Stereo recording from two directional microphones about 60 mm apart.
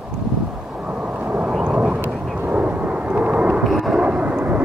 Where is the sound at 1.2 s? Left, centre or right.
Right.